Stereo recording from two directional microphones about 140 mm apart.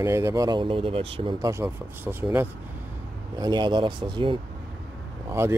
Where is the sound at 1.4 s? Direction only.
20° right (ahead or behind).